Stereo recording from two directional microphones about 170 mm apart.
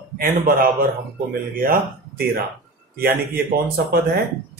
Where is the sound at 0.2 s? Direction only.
55° right (ahead or behind).